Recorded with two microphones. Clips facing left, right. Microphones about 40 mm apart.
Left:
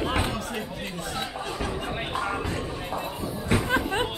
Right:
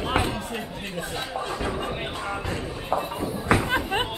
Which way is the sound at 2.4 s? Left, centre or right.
Right.